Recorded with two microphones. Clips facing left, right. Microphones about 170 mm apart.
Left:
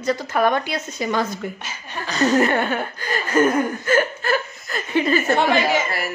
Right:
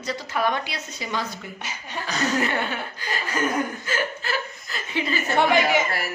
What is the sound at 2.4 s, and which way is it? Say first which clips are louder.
A woman's voice: left 6 dB; 50° left (ahead or behind).